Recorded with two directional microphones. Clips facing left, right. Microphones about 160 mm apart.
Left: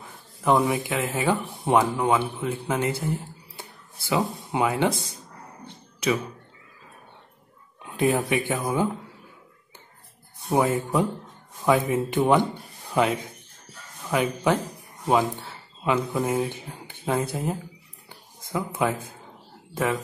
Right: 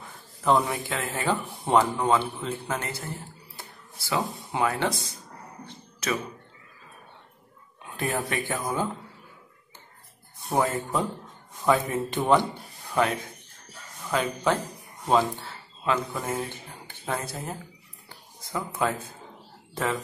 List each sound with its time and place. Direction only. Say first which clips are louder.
0.0 s speech: left 1 dB; 10° left (ahead or behind)
7.9 s speech: left 6 dB; 15° left (ahead or behind)
10.5 s speech: left 3 dB; 10° left (ahead or behind)
14.1 s speech: left 3 dB; 10° left (ahead or behind)